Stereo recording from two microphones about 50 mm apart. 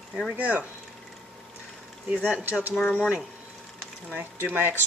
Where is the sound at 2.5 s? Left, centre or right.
Right.